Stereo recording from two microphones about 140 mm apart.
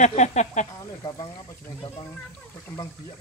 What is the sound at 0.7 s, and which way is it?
Speech, 25° left (ahead or behind).